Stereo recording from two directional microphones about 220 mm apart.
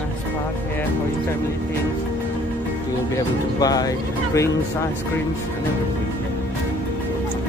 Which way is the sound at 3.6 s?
15° left (ahead or behind).